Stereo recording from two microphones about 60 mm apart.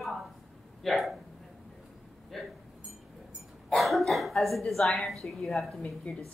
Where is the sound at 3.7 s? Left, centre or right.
Centre.